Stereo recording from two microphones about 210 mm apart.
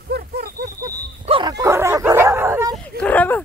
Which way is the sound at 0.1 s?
45° right (ahead or behind).